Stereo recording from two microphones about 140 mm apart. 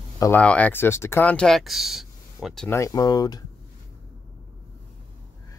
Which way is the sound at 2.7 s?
20° left (ahead or behind).